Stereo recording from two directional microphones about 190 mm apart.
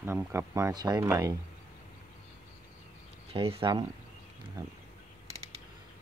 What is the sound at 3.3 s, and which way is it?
Speech, 30° right (ahead or behind).